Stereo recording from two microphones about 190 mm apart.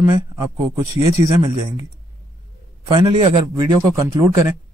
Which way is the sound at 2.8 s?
25° right (ahead or behind).